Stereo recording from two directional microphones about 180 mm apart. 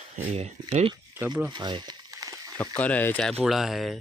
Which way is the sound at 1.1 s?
5° right (ahead or behind).